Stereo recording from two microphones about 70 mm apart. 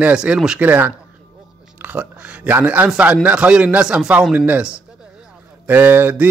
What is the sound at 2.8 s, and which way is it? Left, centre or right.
A man's voice, centre.